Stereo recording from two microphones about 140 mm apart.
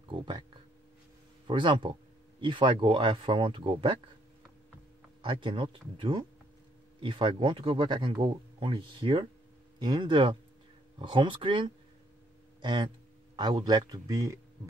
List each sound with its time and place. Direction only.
0.1 s a sound: 35° right (ahead or behind)
1.5 s speech: 35° right (ahead or behind)
5.2 s speech: 35° right (ahead or behind)